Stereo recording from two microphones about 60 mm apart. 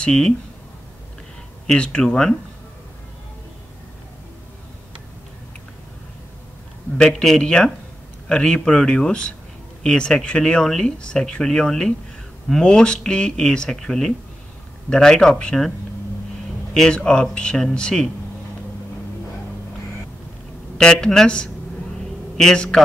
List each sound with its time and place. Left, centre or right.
0.0 s speech: centre
1.7 s speech: centre
7.0 s speech: centre
16.7 s speech: centre
20.7 s speech: centre